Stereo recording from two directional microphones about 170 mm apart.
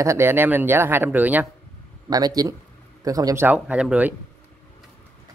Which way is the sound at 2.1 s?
20° right (ahead or behind).